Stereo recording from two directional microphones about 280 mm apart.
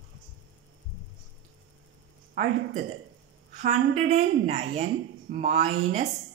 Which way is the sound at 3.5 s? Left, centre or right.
Right.